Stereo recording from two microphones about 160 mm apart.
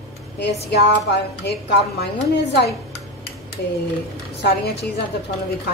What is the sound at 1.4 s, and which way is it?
A woman's voice, 90° left.